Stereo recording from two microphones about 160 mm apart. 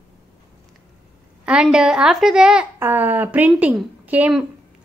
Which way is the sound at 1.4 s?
5° right (ahead or behind).